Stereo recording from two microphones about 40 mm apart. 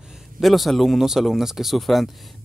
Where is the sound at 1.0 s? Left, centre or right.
Centre.